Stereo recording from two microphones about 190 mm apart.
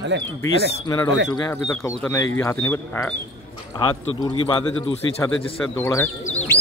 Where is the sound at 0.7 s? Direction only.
25° left (ahead or behind).